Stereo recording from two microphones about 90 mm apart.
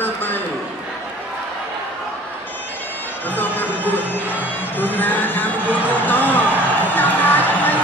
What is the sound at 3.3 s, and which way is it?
Music, 20° left (ahead or behind).